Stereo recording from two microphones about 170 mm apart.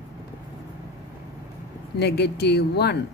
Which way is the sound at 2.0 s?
70° left (ahead or behind).